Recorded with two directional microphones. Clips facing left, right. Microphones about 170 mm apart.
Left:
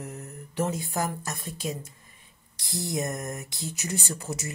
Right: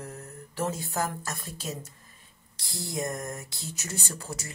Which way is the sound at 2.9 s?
20° left (ahead or behind).